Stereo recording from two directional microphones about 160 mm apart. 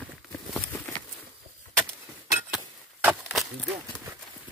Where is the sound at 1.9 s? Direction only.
15° right (ahead or behind).